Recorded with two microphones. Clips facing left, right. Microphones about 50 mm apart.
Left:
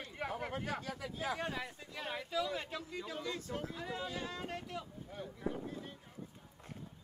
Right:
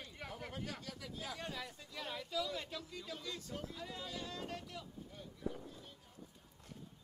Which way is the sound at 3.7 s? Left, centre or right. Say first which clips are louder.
Left 5 dB; left.